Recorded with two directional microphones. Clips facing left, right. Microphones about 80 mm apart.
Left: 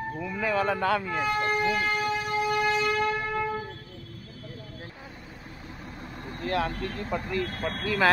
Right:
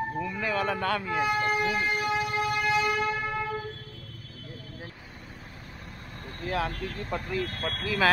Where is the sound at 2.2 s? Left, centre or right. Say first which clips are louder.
Even; right.